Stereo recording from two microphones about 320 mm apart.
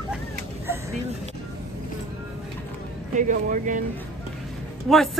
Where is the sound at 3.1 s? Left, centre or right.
Right.